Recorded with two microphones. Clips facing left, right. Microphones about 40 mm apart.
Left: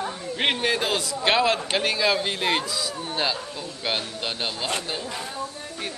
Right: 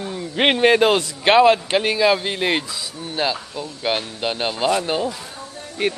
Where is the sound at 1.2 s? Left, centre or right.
Centre.